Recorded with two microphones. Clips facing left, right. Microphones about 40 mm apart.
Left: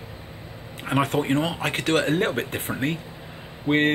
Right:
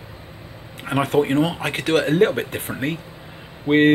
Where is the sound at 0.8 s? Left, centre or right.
Centre.